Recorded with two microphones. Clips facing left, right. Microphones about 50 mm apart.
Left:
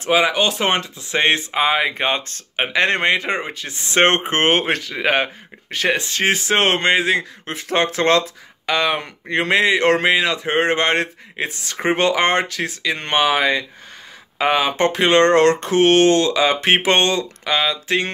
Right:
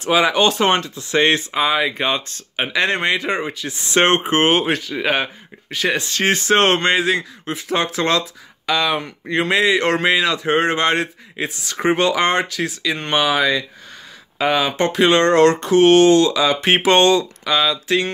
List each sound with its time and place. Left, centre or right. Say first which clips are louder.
0.2 s speech: right 2 dB; centre; by 5.9 s left
5.9 s speech: even; left
6.9 s speech: left 1 dB; left
7.4 s speech: even; left